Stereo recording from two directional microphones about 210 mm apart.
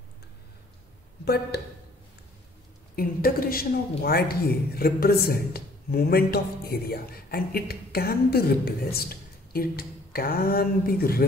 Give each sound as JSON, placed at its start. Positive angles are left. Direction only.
{"t": 1.2, "sound": "speech", "side_deg": 50}
{"t": 3.0, "sound": "a woman's voice", "side_deg": 45}